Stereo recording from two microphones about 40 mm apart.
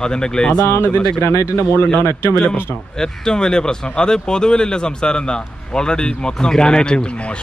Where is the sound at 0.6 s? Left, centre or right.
Left.